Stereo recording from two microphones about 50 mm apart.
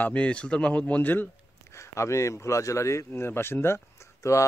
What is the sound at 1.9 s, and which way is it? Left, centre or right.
Speech, left.